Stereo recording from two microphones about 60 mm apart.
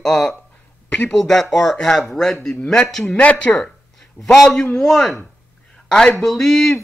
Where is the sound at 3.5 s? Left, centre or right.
Centre.